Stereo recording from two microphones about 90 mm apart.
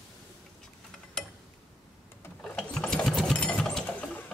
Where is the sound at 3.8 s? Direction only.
15° left (ahead or behind).